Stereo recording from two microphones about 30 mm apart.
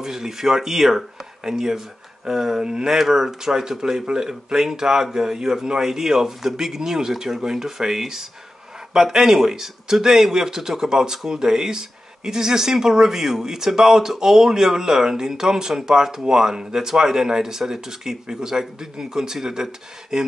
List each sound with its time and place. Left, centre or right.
0.0 s a man's voice: centre
2.6 s speech: right
2.9 s a man's voice: centre